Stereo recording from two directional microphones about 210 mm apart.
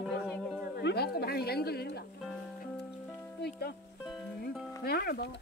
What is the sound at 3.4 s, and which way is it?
Music, 50° left (ahead or behind).